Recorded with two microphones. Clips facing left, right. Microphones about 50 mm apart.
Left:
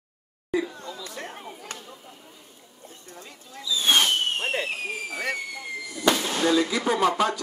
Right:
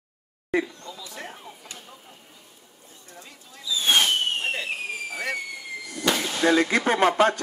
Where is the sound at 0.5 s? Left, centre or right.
Right.